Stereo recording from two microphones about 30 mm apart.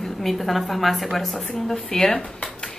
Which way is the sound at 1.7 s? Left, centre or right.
Centre.